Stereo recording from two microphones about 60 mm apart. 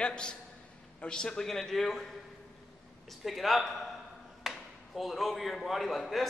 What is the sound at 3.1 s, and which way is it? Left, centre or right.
A man's voice, centre.